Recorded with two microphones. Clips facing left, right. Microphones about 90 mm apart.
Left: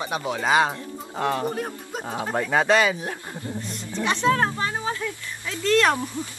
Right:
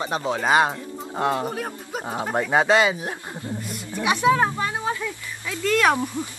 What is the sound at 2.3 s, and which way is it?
Speech, 20° right (ahead or behind).